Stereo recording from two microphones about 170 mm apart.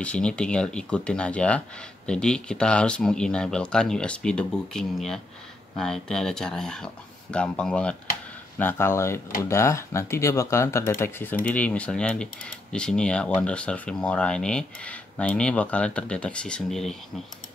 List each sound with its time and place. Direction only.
0.0 s speech: 5° left (ahead or behind)